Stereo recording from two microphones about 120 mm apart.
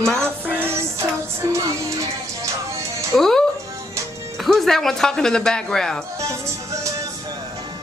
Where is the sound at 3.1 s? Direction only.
5° left (ahead or behind).